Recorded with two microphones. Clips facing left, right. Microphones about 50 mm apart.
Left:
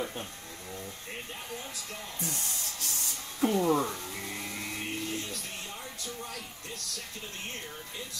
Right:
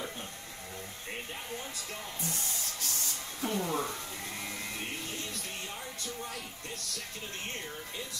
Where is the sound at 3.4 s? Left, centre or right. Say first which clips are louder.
Left 7 dB; left.